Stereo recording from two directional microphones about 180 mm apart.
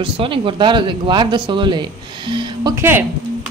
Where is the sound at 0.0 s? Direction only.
30° right (ahead or behind); by 3.1 s 15° right (ahead or behind).